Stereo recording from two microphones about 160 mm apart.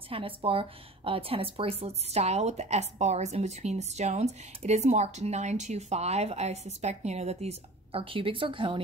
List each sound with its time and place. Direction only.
0.1 s a woman's voice: 35° right (ahead or behind)